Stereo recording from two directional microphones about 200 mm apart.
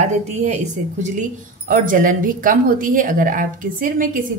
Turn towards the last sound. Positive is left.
turn(degrees=-40)  # may be behind; listen again after turning